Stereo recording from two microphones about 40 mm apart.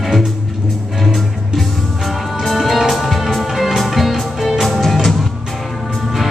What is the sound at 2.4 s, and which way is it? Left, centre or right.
Music, centre.